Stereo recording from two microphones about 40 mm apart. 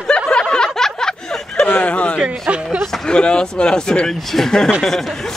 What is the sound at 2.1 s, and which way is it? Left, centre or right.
Speech, right.